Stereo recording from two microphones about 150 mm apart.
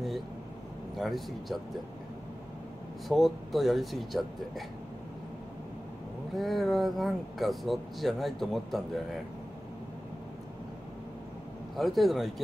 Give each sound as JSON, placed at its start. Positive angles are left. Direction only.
{"t": 0.9, "sound": "speech", "side_deg": 0}
{"t": 3.1, "sound": "speech", "side_deg": 0}
{"t": 6.3, "sound": "speech", "side_deg": 0}
{"t": 11.7, "sound": "speech", "side_deg": 0}